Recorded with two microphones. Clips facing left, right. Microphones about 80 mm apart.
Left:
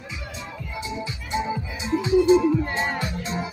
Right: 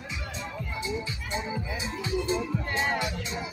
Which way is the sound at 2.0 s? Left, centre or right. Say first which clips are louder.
Left 13 dB; left.